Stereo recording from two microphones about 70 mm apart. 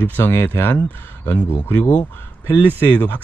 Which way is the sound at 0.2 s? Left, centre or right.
Left.